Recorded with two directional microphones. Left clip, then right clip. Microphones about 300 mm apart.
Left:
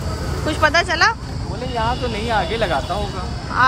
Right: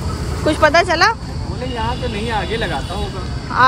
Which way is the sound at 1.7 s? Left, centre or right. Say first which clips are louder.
Left 2 dB; centre.